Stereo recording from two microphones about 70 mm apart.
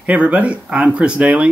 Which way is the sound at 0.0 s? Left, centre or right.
Centre.